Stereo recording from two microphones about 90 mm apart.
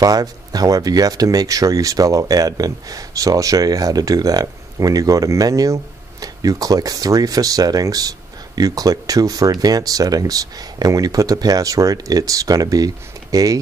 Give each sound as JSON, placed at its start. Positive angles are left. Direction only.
{"t": 0.0, "sound": "speech", "side_deg": -45}